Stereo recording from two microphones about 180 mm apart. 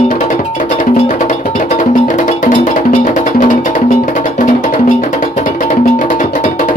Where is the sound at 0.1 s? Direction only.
45° left (ahead or behind).